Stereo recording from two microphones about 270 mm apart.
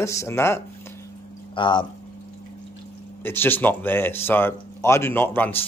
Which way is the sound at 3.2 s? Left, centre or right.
Centre.